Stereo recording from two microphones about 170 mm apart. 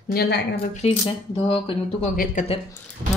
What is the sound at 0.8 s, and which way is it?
Speech, 35° left (ahead or behind).